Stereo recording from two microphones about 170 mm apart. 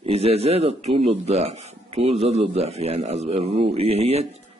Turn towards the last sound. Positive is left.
turn(degrees=-40)  # may be behind; listen again after turning